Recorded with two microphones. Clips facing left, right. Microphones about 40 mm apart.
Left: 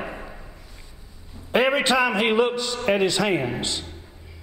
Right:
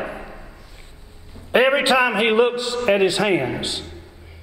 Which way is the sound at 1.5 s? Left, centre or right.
Centre.